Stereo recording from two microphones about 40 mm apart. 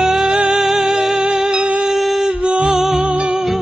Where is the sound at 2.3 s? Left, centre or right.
Right.